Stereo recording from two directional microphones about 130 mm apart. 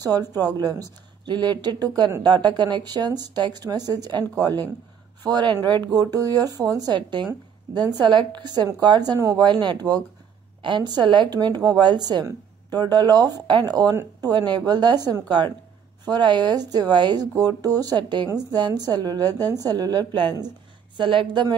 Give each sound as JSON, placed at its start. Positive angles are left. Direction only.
{"t": 0.0, "sound": "a woman's voice", "side_deg": -30}